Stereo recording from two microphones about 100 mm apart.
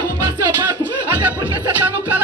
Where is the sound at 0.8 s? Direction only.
15° right (ahead or behind).